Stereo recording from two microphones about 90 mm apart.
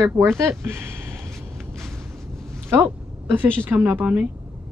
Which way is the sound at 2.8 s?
20° right (ahead or behind).